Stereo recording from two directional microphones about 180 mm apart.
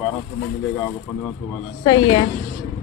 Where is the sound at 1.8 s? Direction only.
25° left (ahead or behind).